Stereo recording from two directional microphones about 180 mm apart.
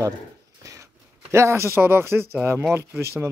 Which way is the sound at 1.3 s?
15° right (ahead or behind).